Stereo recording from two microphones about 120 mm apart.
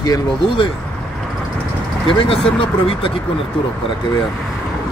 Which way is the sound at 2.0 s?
50° left (ahead or behind).